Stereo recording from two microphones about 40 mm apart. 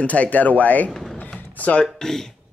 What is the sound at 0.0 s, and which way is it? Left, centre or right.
Speech, left.